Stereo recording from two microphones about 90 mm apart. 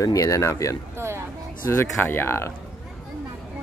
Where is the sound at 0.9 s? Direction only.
30° right (ahead or behind).